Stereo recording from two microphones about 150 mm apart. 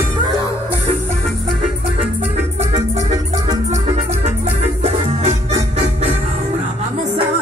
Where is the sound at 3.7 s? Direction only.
50° right (ahead or behind).